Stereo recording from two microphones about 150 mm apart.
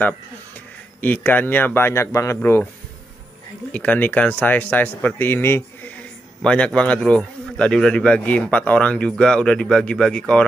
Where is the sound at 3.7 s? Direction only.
10° left (ahead or behind).